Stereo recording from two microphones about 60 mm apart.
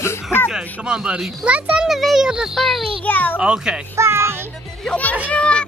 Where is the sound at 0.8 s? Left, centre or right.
Centre.